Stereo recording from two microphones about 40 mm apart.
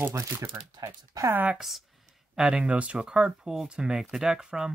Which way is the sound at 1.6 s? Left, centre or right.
Centre.